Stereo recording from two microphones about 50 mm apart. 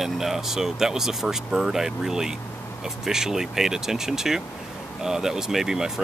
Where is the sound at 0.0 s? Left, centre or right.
Centre.